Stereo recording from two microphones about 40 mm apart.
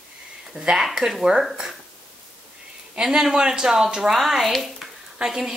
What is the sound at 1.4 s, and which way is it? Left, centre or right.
Speech, centre.